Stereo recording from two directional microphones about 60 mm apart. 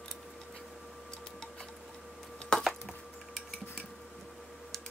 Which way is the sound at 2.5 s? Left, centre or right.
Centre.